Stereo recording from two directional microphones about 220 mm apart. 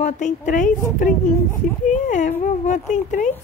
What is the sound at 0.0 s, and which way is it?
Speech, 35° left (ahead or behind).